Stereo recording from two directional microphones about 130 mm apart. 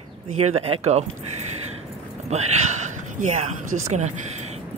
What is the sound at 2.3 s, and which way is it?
Speech, 60° right (ahead or behind).